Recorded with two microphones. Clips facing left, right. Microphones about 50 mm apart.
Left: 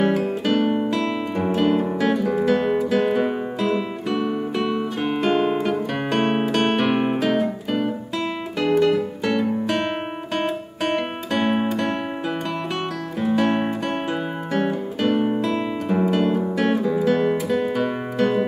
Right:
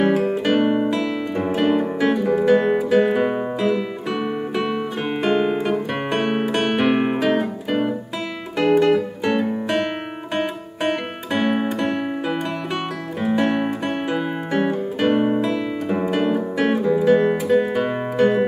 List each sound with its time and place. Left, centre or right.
0.0 s music: centre
3.0 s guitar: centre
4.1 s music: centre
6.2 s music: centre
6.9 s music: centre
10.9 s music: centre
13.2 s music: centre
13.5 s music: centre
13.8 s music: centre
15.1 s guitar: centre